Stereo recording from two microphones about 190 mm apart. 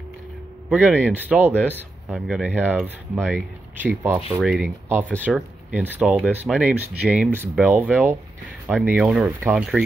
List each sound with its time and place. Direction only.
0.7 s speech: 10° right (ahead or behind)
1.5 s speech: 10° left (ahead or behind)
1.8 s speech: 5° right (ahead or behind)